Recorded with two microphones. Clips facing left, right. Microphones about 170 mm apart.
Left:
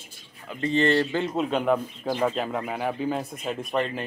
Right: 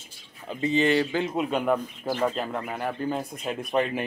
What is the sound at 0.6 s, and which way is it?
Speech, 5° right (ahead or behind).